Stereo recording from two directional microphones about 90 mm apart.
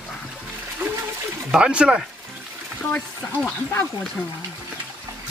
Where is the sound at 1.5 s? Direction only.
10° right (ahead or behind).